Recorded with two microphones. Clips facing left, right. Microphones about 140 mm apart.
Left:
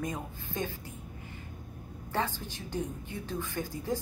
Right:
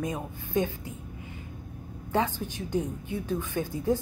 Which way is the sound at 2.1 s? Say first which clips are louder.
Right 5 dB; 15° right (ahead or behind).